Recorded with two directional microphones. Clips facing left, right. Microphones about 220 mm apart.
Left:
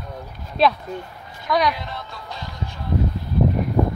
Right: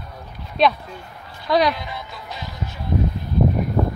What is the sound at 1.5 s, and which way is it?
Speech, 30° right (ahead or behind).